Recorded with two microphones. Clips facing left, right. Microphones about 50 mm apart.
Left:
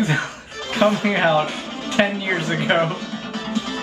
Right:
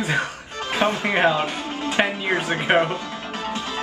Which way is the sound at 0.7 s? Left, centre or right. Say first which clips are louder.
Left 3 dB; right.